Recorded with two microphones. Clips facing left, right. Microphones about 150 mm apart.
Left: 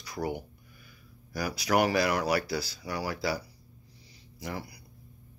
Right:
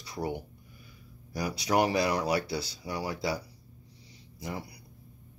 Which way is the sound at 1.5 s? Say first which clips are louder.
Left 1 dB; 30° right (ahead or behind).